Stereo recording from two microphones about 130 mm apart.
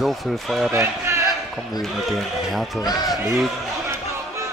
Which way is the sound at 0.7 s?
20° right (ahead or behind).